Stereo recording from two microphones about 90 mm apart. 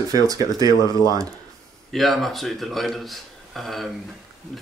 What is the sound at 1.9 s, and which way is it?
Speech, centre (ahead or behind).